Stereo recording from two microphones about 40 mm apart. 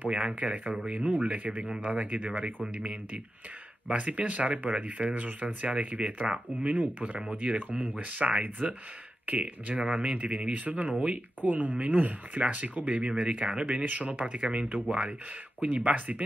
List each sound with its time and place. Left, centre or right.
0.1 s speech: right
3.9 s speech: right
15.6 s speech: right